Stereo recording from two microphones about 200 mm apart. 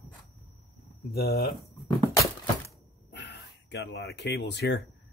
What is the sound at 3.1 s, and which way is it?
Speech, 60° left (ahead or behind).